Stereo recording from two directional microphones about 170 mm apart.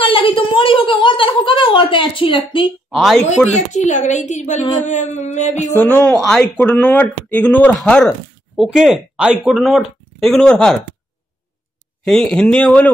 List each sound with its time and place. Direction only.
0.0 s a sound: 30° left (ahead or behind)
2.9 s speech: centre (ahead or behind)
3.4 s a woman's voice: 45° left (ahead or behind)
6.2 s speech: 5° left (ahead or behind)
12.0 s speech: 5° left (ahead or behind)